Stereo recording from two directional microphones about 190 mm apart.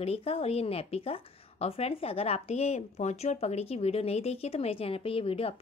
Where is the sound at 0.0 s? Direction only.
30° left (ahead or behind).